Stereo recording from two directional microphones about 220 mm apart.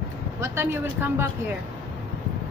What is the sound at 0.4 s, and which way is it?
Speech, 10° right (ahead or behind).